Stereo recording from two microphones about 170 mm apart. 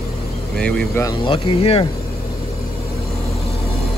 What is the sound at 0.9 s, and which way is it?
Speech, 20° left (ahead or behind).